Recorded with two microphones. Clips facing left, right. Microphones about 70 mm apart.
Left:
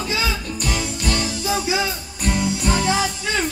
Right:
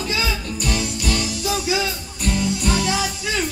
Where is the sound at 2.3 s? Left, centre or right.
Left.